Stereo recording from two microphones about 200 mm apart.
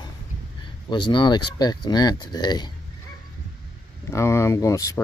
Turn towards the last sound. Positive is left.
turn(degrees=15)  # may be behind; listen again after turning